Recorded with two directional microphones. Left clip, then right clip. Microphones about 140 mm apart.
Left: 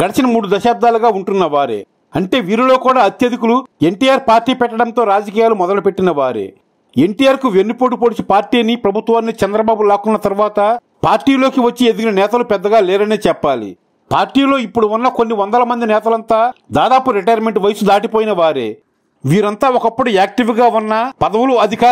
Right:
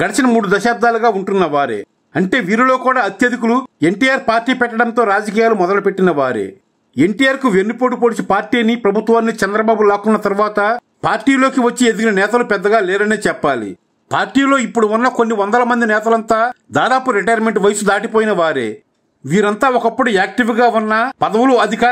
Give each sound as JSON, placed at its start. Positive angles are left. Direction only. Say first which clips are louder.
{"t": 0.4, "sound": "a man's voice", "louder": "left 3 dB", "side_deg": 30}
{"t": 19.2, "sound": "speech", "louder": "left 1 dB", "side_deg": 35}